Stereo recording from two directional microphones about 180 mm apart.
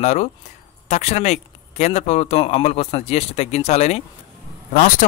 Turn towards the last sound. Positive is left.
turn(degrees=45)  # may be behind; listen again after turning